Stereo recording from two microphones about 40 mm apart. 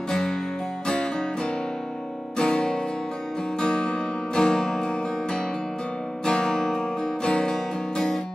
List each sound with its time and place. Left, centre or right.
0.1 s music: centre